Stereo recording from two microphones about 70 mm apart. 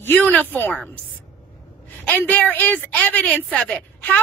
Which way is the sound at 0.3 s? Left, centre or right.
Left.